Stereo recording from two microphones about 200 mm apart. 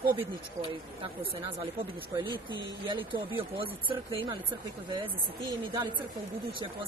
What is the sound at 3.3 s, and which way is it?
Speech, 25° right (ahead or behind).